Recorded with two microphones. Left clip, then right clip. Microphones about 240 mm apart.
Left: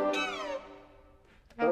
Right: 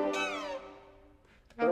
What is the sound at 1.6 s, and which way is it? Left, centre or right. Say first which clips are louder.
Music: left 1 dB; right.